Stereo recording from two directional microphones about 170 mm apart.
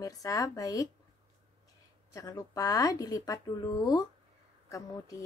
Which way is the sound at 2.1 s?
20° left (ahead or behind).